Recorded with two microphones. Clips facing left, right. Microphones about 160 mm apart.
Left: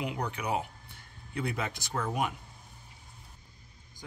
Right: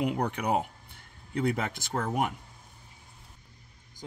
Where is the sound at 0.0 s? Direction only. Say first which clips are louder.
Right 5 dB; 55° right (ahead or behind).